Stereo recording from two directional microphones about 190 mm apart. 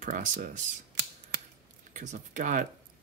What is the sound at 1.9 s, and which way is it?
Speech, 40° right (ahead or behind).